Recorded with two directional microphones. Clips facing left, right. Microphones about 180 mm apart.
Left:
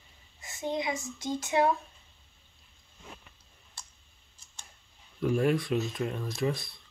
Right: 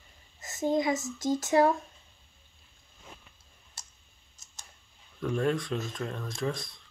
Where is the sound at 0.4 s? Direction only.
45° right (ahead or behind).